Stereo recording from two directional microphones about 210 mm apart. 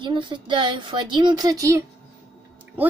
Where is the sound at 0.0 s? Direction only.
20° right (ahead or behind).